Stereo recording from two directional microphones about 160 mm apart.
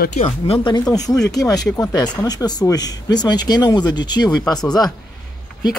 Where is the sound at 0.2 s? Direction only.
35° left (ahead or behind).